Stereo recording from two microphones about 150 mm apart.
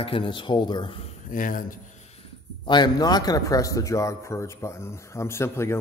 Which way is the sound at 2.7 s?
30° left (ahead or behind).